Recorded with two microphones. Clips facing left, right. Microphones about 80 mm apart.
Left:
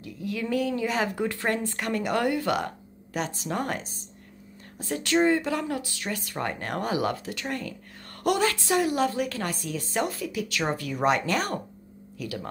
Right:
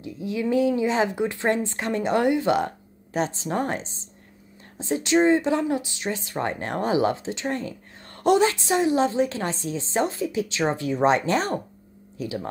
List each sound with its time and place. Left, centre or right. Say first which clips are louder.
0.0 s a woman's voice: right 5 dB; right